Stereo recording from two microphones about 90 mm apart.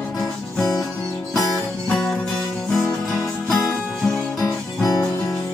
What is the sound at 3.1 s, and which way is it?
Music, 5° left (ahead or behind).